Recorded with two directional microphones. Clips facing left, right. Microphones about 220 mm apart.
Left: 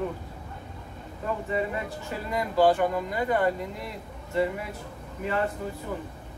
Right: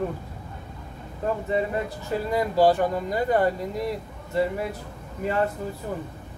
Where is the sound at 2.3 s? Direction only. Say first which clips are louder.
Right 2 dB; 35° right (ahead or behind).